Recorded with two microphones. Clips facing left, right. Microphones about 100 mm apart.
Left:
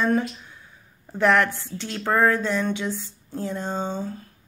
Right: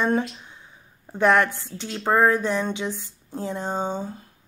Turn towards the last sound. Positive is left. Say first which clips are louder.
# right 1 dB
turn(degrees=-20)  # may be behind; listen again after turning